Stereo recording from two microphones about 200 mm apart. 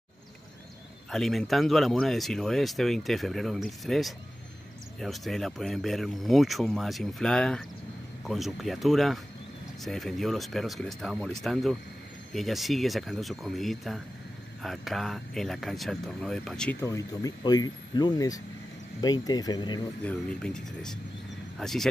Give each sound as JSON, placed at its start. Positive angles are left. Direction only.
{"t": 1.1, "sound": "speech", "side_deg": 0}
{"t": 16.8, "sound": "speech", "side_deg": 15}
{"t": 20.0, "sound": "speech", "side_deg": 5}